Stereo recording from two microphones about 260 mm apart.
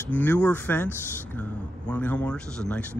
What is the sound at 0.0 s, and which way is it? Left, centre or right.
A man's voice, centre.